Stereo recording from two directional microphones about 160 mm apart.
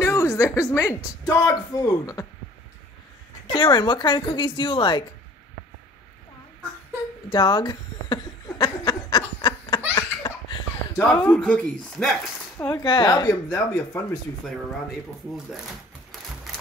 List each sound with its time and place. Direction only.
0.0 s a sound: 20° left (ahead or behind)
1.3 s speech: 20° left (ahead or behind)
3.4 s speech: 30° left (ahead or behind)
7.2 s a sound: 25° left (ahead or behind)
9.9 s laughter: 25° left (ahead or behind)
11.1 s speech: 5° left (ahead or behind)
12.5 s speech: 20° left (ahead or behind)